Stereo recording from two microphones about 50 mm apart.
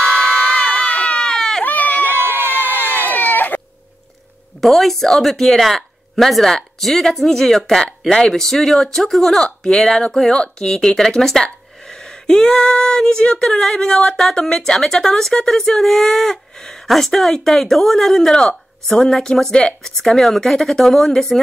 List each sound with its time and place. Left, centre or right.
0.1 s crowd: left
1.3 s sheep: centre
1.6 s a sound: left
2.0 s crowd: right
3.1 s baby cry: left
4.6 s speech: centre
11.9 s a sound: centre
13.4 s speech: centre